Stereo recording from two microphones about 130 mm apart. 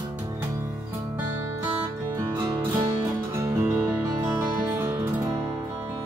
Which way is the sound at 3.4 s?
20° right (ahead or behind).